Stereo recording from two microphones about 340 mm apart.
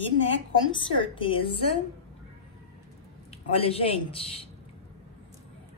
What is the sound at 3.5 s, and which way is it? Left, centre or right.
Speech, centre.